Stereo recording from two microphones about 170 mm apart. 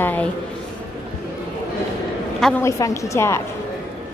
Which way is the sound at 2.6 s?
20° left (ahead or behind).